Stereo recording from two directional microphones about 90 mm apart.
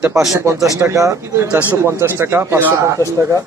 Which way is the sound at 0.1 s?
5° right (ahead or behind).